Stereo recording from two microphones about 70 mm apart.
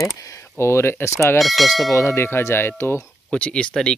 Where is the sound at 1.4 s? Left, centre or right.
Centre.